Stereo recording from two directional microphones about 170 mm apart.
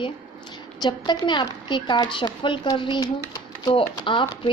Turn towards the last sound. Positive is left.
turn(degrees=30)  # may be behind; listen again after turning